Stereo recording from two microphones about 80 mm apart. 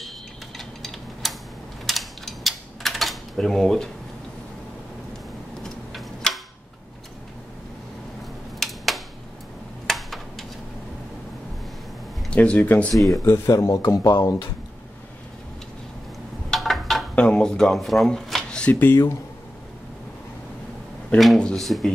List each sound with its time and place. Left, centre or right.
0.6 s a sound: centre
5.6 s tick-tock: centre
8.5 s a sound: centre
12.3 s speech: centre
13.1 s speech: left
13.5 s speech: left
16.4 s a sound: centre
17.1 s speech: centre
21.1 s speech: centre
21.5 s speech: centre